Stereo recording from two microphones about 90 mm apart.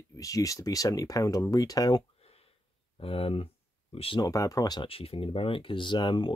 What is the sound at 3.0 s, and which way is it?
Speech, 90° left.